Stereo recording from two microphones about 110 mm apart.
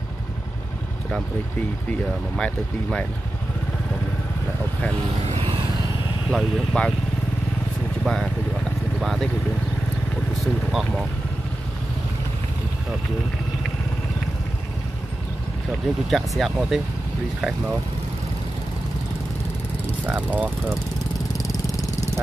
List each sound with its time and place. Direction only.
2.3 s speech: 10° left (ahead or behind)
6.3 s speech: 10° left (ahead or behind)
8.0 s vehicle: 5° left (ahead or behind)
9.0 s speech: centre (ahead or behind)
10.4 s speech: centre (ahead or behind)
16.1 s speech: centre (ahead or behind)
20.1 s speech: 15° right (ahead or behind)
21.5 s vehicle: 30° left (ahead or behind)